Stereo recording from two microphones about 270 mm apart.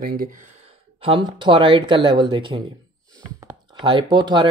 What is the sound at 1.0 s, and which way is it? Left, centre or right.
Speech, centre.